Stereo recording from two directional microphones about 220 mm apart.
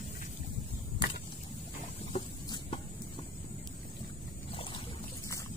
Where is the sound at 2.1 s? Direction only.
25° left (ahead or behind).